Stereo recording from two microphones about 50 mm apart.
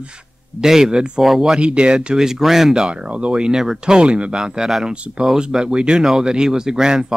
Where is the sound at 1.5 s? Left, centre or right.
Right.